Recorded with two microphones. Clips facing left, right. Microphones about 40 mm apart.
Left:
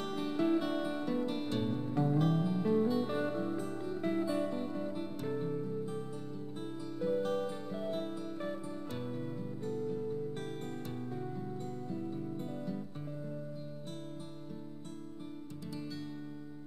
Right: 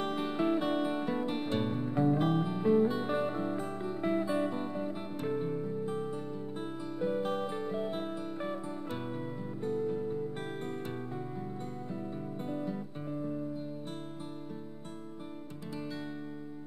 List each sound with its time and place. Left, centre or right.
0.0 s music: right
7.0 s music: right
11.9 s music: right